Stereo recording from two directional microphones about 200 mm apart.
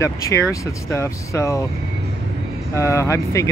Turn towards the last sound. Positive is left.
turn(degrees=15)  # may be behind; listen again after turning